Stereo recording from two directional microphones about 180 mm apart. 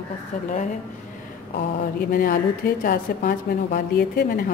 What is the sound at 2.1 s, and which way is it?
A woman's voice, 55° left (ahead or behind).